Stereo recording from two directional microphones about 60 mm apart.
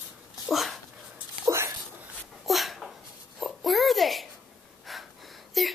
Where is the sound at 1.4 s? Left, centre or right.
Right.